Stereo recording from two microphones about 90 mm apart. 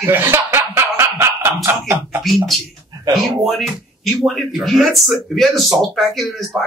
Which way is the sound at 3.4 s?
Centre (ahead or behind).